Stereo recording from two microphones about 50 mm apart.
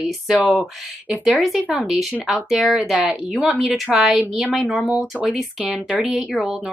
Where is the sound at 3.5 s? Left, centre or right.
Centre.